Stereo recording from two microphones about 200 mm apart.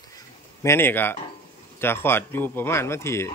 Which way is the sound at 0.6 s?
10° left (ahead or behind).